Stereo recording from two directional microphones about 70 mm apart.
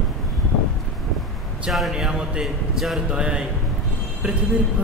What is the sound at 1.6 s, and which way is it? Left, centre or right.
Speech, centre.